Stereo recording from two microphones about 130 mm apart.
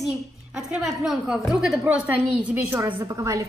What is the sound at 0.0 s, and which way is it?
A woman's voice, 5° right (ahead or behind).